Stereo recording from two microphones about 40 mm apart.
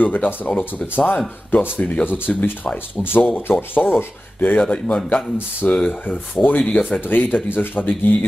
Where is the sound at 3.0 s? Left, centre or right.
Left.